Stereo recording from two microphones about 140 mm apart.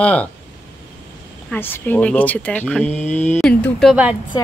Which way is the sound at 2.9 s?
55° left (ahead or behind).